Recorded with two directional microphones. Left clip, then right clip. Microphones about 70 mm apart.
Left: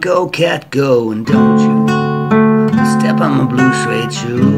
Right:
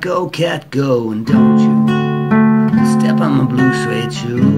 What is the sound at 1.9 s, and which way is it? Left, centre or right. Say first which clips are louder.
Music: left 2 dB; centre.